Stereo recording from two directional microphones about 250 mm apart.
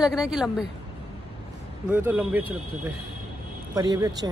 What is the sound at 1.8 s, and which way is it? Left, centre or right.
Speech, centre.